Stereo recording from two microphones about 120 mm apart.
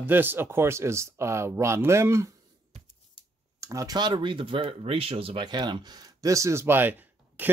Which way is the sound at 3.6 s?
25° right (ahead or behind).